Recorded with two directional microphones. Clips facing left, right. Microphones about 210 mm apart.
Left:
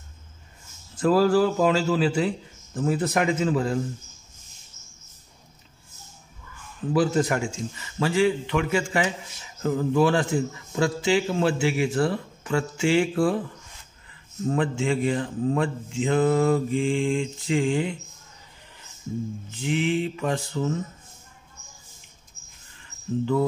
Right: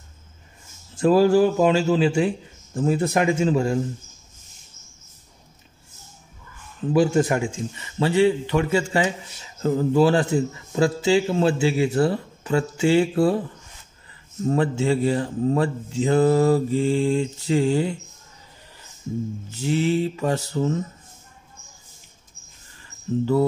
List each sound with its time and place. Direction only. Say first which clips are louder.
0.9 s a man's voice: right 3 dB; 25° right (ahead or behind)
6.9 s a man's voice: right 3 dB; 25° right (ahead or behind)
14.5 s speech: right 3 dB; 40° right (ahead or behind)
19.5 s speech: right 3 dB; 40° right (ahead or behind)